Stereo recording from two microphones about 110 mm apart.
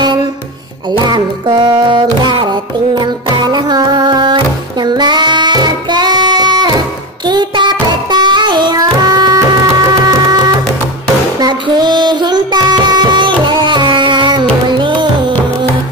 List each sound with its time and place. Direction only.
0.8 s music: 40° right (ahead or behind)